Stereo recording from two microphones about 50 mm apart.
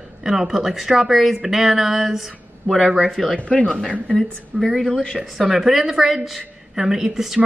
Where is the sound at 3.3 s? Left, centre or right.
Left.